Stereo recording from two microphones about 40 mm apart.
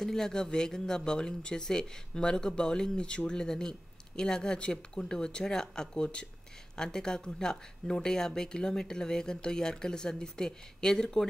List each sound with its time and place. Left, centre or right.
0.0 s speech: centre